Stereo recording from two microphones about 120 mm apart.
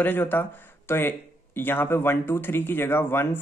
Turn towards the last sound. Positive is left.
turn(degrees=20)  # may be behind; listen again after turning